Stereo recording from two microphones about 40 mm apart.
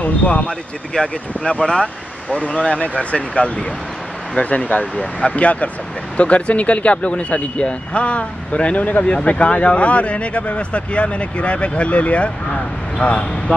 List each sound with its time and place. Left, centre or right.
0.0 s speech: left
8.7 s speech: left
9.0 s speech: left
9.3 s speech: left